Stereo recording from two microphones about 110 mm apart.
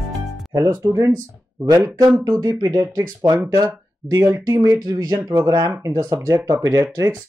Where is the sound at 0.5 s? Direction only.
30° right (ahead or behind).